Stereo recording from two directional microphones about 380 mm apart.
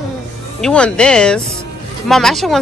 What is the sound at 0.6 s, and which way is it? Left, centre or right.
Speech, centre.